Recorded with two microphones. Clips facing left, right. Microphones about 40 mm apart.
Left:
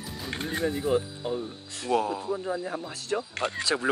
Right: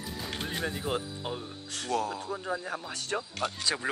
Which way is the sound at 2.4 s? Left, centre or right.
Right.